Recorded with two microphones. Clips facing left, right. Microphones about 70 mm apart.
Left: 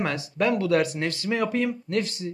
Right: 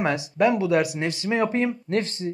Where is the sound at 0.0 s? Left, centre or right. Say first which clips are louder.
Right 4 dB; centre.